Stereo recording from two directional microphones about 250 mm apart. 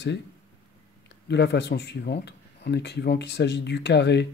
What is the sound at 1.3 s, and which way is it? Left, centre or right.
Speech, left.